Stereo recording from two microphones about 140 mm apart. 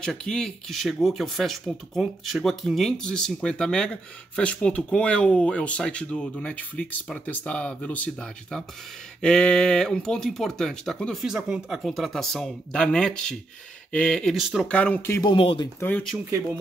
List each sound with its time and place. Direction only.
0.0 s speech: 5° left (ahead or behind)
14.7 s speech: 10° left (ahead or behind)
15.2 s speech: 40° left (ahead or behind)
15.8 s speech: 10° left (ahead or behind)